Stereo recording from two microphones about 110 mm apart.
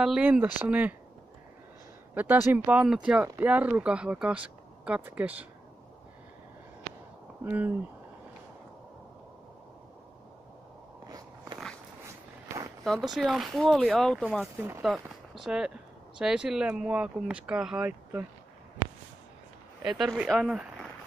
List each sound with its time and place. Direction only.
0.0 s speech: 10° right (ahead or behind)
2.1 s speech: 15° right (ahead or behind)
2.7 s speech: 10° right (ahead or behind)
7.4 s speech: 15° right (ahead or behind)
11.1 s biting: 35° right (ahead or behind)
12.8 s speech: centre (ahead or behind)
19.8 s speech: 5° right (ahead or behind)